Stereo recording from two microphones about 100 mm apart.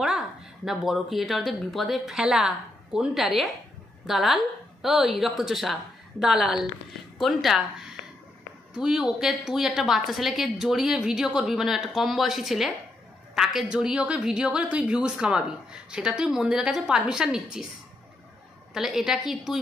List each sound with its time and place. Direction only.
0.7 s a woman's voice: centre (ahead or behind)
8.7 s a woman's voice: 5° right (ahead or behind)
18.7 s a woman's voice: 5° right (ahead or behind)